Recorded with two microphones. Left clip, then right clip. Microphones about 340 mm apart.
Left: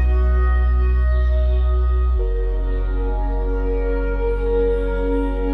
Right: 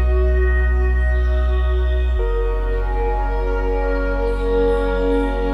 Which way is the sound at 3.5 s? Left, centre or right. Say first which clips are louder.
Right 1 dB; right.